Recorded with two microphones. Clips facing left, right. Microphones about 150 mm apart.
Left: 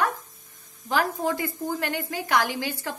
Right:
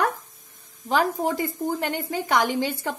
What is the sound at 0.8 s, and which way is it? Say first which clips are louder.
Speech: right 2 dB; 20° right (ahead or behind).